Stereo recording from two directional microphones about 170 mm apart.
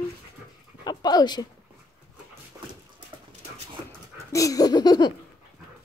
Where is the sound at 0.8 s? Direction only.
25° left (ahead or behind).